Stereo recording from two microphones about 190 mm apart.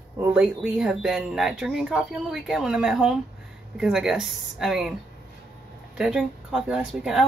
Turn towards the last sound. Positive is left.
turn(degrees=-5)  # may be behind; listen again after turning